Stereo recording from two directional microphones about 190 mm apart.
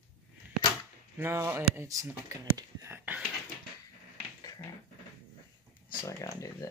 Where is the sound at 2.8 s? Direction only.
10° right (ahead or behind).